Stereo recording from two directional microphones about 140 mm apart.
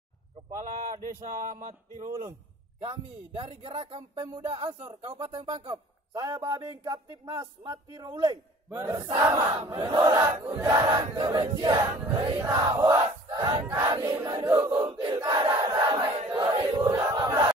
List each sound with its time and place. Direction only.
1.2 s speech: 65° right (ahead or behind)
2.9 s speech: 35° right (ahead or behind)
6.2 s a sound: 25° right (ahead or behind)
10.4 s battle cry: 15° right (ahead or behind)
10.7 s a sound: 25° right (ahead or behind)
12.1 s speech: 35° right (ahead or behind)
12.4 s battle cry: 30° right (ahead or behind)